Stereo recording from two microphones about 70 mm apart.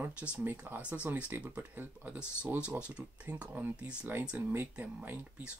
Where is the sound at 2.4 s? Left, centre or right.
Centre.